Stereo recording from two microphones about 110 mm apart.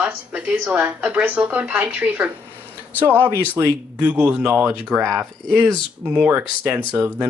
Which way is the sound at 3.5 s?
15° right (ahead or behind).